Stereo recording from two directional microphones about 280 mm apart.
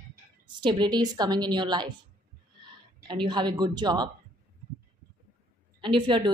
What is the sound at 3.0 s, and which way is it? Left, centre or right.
A woman's voice, centre.